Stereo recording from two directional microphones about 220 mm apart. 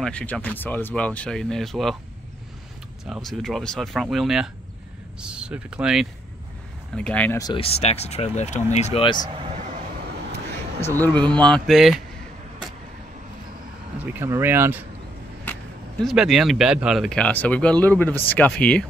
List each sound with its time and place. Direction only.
0.0 s speech: 5° left (ahead or behind)
3.1 s speech: centre (ahead or behind); by 9.2 s 25° left (ahead or behind)
11.4 s speech: centre (ahead or behind)
13.9 s speech: 10° right (ahead or behind)
15.5 s vehicle: 10° left (ahead or behind)
16.0 s speech: centre (ahead or behind)